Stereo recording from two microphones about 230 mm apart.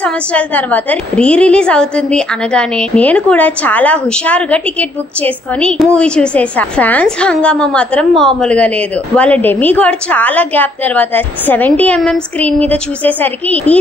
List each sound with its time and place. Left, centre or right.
0.0 s a woman's voice: centre